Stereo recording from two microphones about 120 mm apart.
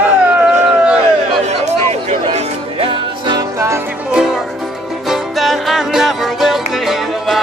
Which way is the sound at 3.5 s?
25° right (ahead or behind).